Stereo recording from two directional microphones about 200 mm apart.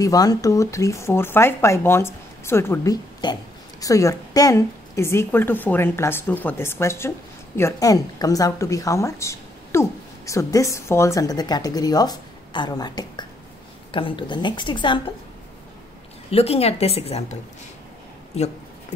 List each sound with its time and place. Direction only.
0.0 s a woman's voice: 20° left (ahead or behind)
16.3 s a woman's voice: 30° left (ahead or behind)